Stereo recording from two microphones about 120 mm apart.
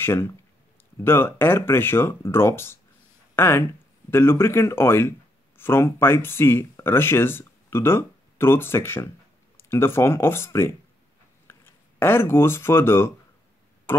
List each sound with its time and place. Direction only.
0.0 s speech: 20° left (ahead or behind)